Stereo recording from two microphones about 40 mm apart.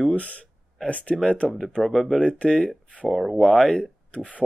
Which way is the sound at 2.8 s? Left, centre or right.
Left.